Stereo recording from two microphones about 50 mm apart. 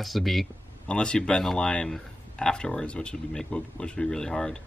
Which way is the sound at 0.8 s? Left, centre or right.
Centre.